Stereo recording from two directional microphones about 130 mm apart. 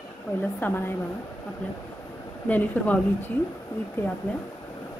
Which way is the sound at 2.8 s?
15° left (ahead or behind).